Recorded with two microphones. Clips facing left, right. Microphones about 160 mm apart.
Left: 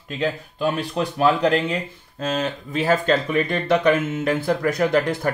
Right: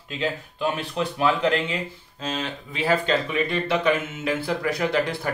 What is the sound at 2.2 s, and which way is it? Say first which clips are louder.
Speech: left 5 dB; 45° left (ahead or behind).